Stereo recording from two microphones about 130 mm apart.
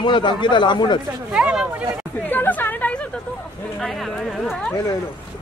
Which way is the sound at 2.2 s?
15° left (ahead or behind).